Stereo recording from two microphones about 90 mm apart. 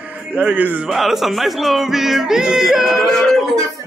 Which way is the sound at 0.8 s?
5° right (ahead or behind).